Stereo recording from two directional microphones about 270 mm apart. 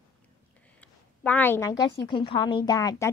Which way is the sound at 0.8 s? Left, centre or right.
Centre.